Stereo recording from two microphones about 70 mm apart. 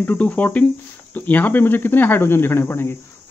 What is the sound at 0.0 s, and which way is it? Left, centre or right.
Speech, left.